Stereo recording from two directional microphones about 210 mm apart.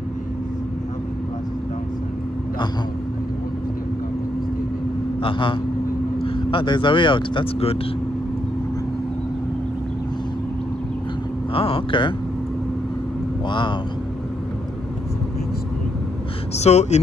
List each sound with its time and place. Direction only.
5.2 s speech: 25° left (ahead or behind)
11.5 s speech: 25° left (ahead or behind)
13.5 s speech: 20° left (ahead or behind)
16.5 s speech: 30° left (ahead or behind)